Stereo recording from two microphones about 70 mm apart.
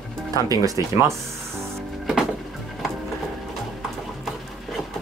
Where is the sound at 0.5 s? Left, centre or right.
Right.